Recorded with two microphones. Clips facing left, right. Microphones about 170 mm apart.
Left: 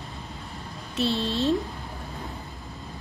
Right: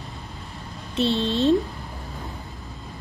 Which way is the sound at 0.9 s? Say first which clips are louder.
Right 4 dB; 20° right (ahead or behind).